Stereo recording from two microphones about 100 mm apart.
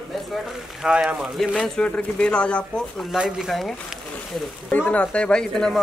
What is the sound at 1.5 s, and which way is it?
A woman's voice, 10° left (ahead or behind).